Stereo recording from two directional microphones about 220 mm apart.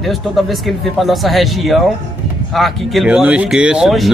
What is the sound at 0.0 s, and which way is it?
Speech, centre (ahead or behind).